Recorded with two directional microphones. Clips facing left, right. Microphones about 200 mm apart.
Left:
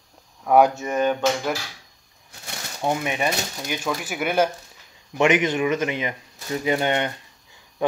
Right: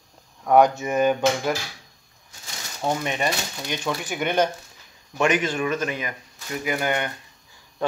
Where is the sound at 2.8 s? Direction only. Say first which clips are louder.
Left 1 dB; 10° left (ahead or behind).